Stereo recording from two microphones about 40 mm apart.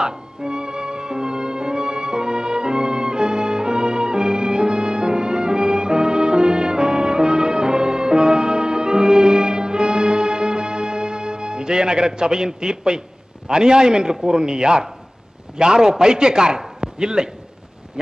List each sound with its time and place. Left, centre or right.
0.0 s music: centre
13.5 s a man's voice: centre